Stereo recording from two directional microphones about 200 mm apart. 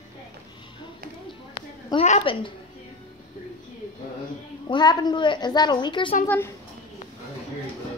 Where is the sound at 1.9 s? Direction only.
30° left (ahead or behind).